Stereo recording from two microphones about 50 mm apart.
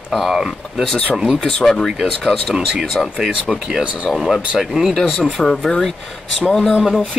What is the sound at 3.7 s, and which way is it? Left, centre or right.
Speech, right.